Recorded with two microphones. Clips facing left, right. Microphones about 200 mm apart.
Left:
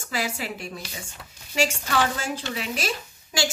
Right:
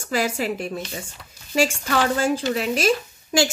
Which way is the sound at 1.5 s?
45° right (ahead or behind).